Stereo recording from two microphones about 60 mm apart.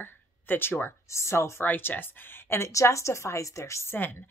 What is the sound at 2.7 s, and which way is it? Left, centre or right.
A woman's voice, left.